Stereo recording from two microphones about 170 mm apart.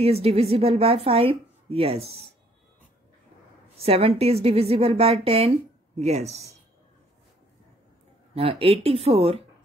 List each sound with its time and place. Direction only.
0.0 s a woman's voice: 35° right (ahead or behind)
3.7 s a woman's voice: 35° right (ahead or behind)
8.4 s a woman's voice: 35° right (ahead or behind)